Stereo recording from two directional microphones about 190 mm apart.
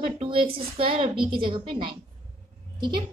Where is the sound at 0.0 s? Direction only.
30° right (ahead or behind).